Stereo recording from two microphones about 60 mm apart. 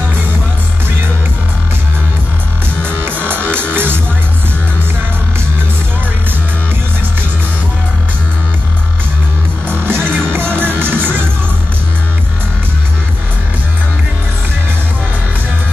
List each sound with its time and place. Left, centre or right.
2.8 s music: right
9.7 s music: right